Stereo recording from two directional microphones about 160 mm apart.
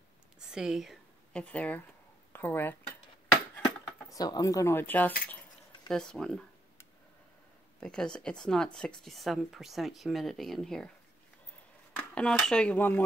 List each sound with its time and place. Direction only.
0.5 s speech: 5° right (ahead or behind); by 3.0 s 10° left (ahead or behind)
3.6 s speech: 25° left (ahead or behind); by 6.4 s 5° left (ahead or behind)
7.8 s speech: 5° left (ahead or behind)
11.9 s speech: 10° left (ahead or behind)